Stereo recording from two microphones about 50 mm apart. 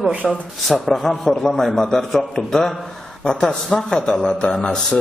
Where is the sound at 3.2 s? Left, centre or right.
Centre.